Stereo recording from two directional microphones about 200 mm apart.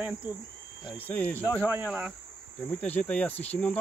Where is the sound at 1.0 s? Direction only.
10° left (ahead or behind).